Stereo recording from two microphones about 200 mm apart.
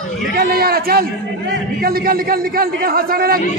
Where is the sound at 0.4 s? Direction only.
50° right (ahead or behind).